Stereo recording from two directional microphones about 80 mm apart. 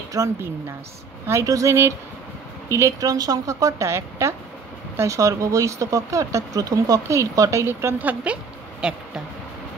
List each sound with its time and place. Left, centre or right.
0.2 s speech: right
1.4 s speech: right
7.6 s a woman's voice: right; by 9.0 s centre